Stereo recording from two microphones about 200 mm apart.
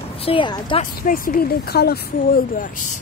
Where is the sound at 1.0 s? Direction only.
45° left (ahead or behind).